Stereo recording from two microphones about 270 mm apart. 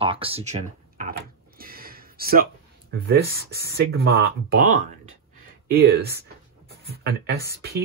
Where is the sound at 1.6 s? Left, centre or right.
Right.